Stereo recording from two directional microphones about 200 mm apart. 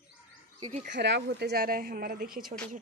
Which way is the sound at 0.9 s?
60° right (ahead or behind).